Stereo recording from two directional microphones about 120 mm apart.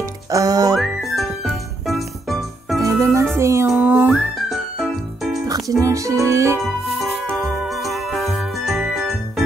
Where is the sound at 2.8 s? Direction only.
30° right (ahead or behind).